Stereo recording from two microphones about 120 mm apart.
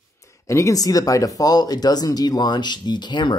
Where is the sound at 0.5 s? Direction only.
25° left (ahead or behind).